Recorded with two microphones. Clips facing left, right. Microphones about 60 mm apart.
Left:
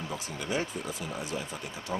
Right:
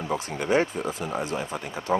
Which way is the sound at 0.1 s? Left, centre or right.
Right.